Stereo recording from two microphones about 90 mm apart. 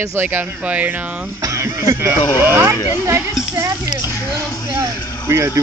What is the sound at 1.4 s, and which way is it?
Speech, 35° right (ahead or behind).